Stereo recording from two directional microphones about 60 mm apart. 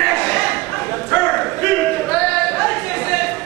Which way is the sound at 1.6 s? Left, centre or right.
Left.